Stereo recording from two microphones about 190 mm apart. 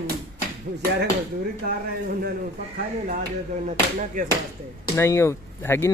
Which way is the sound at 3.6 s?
40° right (ahead or behind).